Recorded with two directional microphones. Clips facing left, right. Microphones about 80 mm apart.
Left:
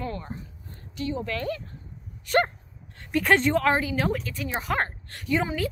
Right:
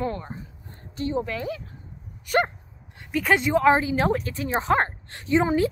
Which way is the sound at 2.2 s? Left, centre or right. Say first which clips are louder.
Even; centre.